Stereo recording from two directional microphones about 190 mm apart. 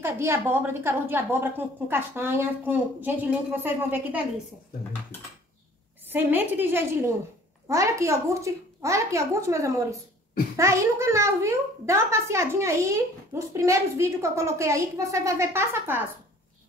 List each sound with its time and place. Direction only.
0.0 s a child's voice: 10° right (ahead or behind)
6.0 s a child's voice: 10° right (ahead or behind)